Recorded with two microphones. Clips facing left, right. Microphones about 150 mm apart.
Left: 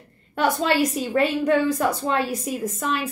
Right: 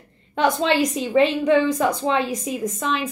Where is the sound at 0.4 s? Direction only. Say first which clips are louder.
Right 1 dB; 5° left (ahead or behind).